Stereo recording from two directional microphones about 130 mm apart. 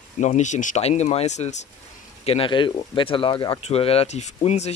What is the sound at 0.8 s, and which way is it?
Speech, 55° left (ahead or behind).